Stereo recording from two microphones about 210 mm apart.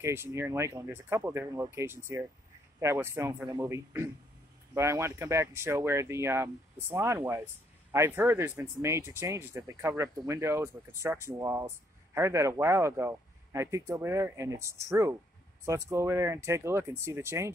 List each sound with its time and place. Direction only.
0.0 s speech: 10° right (ahead or behind)